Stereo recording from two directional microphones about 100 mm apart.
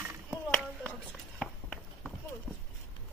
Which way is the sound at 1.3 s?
Centre (ahead or behind).